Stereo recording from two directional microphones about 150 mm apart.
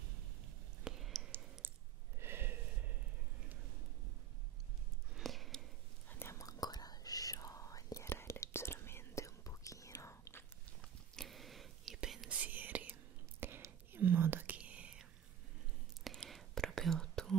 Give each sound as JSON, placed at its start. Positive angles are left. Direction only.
{"t": 0.8, "sound": "clicking", "side_deg": 0}
{"t": 1.6, "sound": "sigh", "side_deg": -15}
{"t": 2.1, "sound": "a sound", "side_deg": -15}
{"t": 5.1, "sound": "a sound", "side_deg": 0}
{"t": 6.0, "sound": "whispering", "side_deg": 15}
{"t": 10.8, "sound": "whispering", "side_deg": 0}